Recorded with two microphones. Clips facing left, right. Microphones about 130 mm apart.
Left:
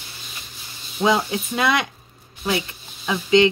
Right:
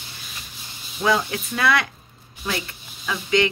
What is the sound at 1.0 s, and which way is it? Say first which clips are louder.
Speech: left 2 dB; 20° left (ahead or behind).